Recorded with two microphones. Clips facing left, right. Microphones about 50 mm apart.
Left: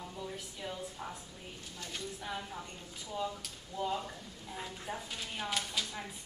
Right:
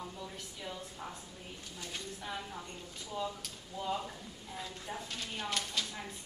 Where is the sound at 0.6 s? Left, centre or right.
Centre.